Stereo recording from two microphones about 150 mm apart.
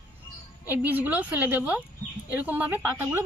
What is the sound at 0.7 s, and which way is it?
A woman's voice, 10° right (ahead or behind).